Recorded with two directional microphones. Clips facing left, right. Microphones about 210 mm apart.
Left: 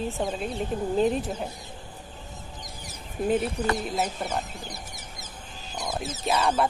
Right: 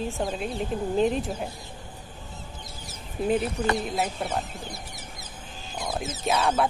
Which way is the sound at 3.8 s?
Centre (ahead or behind).